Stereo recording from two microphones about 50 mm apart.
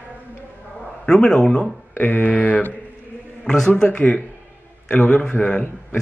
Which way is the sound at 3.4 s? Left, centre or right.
Centre.